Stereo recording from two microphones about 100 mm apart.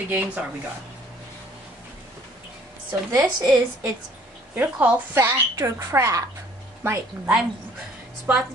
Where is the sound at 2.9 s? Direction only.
40° right (ahead or behind).